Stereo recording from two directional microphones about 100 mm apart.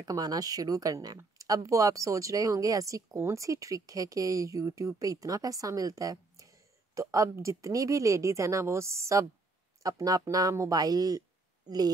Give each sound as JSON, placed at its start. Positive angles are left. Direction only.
{"t": 0.0, "sound": "speech", "side_deg": -40}